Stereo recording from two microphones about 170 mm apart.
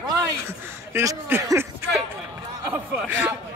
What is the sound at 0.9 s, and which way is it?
Speech, 15° right (ahead or behind).